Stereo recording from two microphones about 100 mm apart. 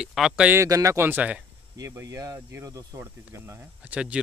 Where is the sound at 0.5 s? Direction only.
35° right (ahead or behind); by 1.4 s 15° right (ahead or behind).